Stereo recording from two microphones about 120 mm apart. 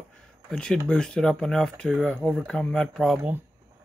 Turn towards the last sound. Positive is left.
turn(degrees=0)  # may be behind; listen again after turning